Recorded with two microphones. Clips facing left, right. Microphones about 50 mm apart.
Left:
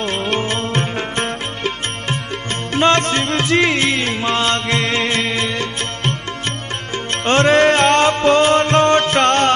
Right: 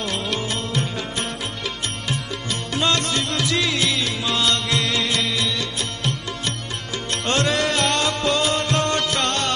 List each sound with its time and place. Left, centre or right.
0.0 s music: left
7.2 s music: left